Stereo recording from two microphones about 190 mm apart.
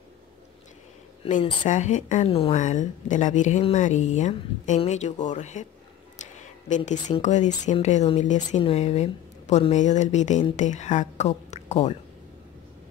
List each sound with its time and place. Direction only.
1.2 s speech: 30° left (ahead or behind)
1.6 s a woman's voice: 40° left (ahead or behind)
6.9 s a woman's voice: 40° left (ahead or behind)